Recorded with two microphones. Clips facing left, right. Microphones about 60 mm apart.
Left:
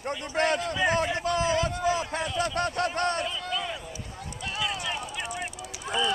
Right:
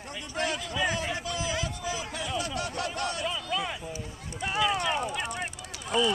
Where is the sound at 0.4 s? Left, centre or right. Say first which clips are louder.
Left 6 dB; left.